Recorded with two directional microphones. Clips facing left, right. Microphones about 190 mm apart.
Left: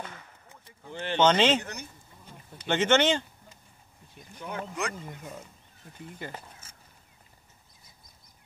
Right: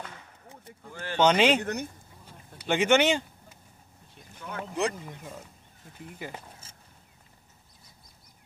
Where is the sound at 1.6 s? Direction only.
55° right (ahead or behind).